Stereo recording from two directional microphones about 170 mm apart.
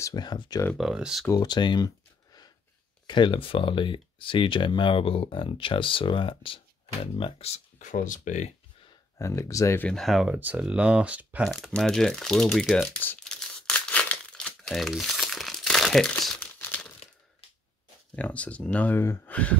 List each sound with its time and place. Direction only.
0.0 s speech: 25° left (ahead or behind)
0.7 s speech: 5° right (ahead or behind)
1.3 s speech: 25° left (ahead or behind)
3.1 s speech: 30° left (ahead or behind); by 8.5 s 45° left (ahead or behind)
9.2 s speech: 20° left (ahead or behind)
9.8 s speech: centre (ahead or behind)
16.5 s crumpling: 10° left (ahead or behind)
18.1 s speech: 5° left (ahead or behind)